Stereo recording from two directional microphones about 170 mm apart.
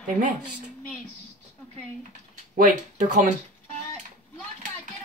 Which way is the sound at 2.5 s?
50° right (ahead or behind).